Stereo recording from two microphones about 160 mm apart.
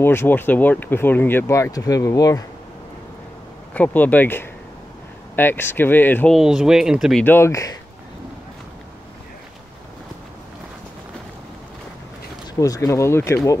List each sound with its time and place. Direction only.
0.0 s speech: 15° left (ahead or behind)
3.7 s speech: 10° left (ahead or behind)
6.3 s speech: 5° right (ahead or behind)
7.2 s speech: 15° left (ahead or behind)
12.5 s speech: 20° left (ahead or behind)